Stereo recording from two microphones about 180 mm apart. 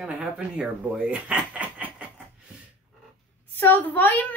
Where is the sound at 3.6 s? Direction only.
10° left (ahead or behind).